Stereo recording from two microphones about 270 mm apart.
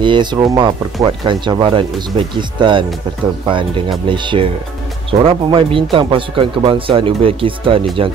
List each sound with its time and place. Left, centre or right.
0.0 s speech: centre
4.1 s speech: centre